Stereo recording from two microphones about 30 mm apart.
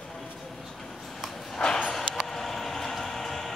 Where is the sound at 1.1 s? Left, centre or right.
Centre.